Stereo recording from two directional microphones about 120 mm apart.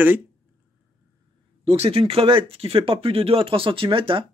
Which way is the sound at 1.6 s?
50° right (ahead or behind).